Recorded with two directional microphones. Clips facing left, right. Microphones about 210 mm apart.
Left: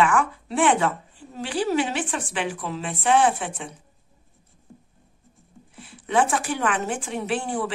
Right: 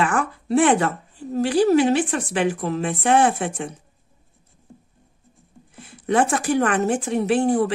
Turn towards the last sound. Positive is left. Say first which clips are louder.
# right 8 dB
turn(degrees=-40)  # may be behind; listen again after turning